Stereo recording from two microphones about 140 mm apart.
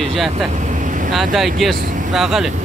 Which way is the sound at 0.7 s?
65° right (ahead or behind).